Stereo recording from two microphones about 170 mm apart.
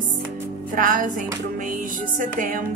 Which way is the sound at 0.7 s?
50° right (ahead or behind).